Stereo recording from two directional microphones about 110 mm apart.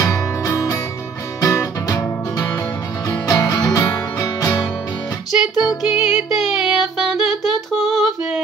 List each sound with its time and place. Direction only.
0.0 s music: 30° left (ahead or behind)
5.7 s music: 5° right (ahead or behind)